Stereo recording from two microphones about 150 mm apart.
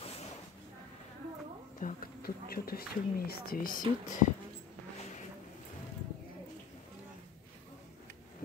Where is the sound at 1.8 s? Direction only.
65° left (ahead or behind); by 3.8 s 80° left.